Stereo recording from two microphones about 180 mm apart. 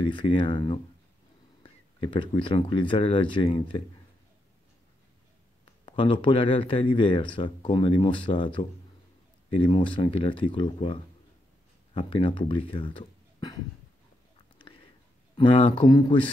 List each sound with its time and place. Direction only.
0.0 s speech: 25° left (ahead or behind)
5.9 s speech: 25° left (ahead or behind)
15.3 s speech: 30° left (ahead or behind)